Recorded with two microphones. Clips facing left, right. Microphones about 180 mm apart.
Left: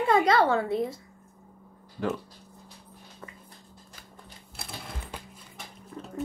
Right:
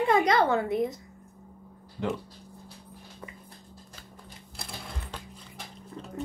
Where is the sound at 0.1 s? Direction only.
20° right (ahead or behind).